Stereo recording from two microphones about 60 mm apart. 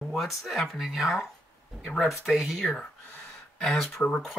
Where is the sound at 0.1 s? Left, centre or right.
Centre.